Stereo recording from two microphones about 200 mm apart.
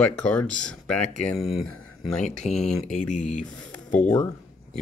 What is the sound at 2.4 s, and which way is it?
Speech, 35° left (ahead or behind).